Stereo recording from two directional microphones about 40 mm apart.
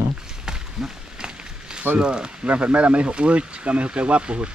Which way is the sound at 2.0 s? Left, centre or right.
Right.